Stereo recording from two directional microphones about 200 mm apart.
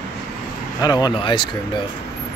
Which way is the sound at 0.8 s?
20° left (ahead or behind).